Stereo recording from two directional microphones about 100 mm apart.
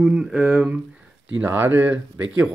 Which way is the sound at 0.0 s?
5° right (ahead or behind).